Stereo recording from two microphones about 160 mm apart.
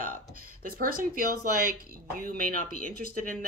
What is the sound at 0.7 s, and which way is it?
Speech, 65° right (ahead or behind).